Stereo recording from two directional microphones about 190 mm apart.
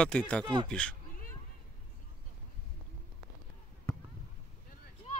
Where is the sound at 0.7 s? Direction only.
5° left (ahead or behind).